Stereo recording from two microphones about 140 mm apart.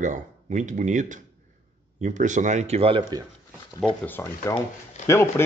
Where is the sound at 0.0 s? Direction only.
60° right (ahead or behind); by 3.0 s 45° right (ahead or behind).